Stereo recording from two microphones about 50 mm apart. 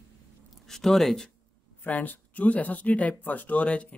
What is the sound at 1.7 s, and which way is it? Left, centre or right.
Speech, left.